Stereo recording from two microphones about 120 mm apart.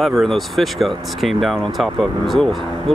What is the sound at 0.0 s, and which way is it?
Speech, centre (ahead or behind).